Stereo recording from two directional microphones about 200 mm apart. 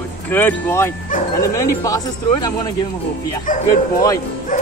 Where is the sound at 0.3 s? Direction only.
10° left (ahead or behind).